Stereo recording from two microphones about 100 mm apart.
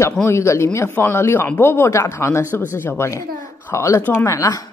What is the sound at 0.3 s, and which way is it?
Speech, 30° left (ahead or behind).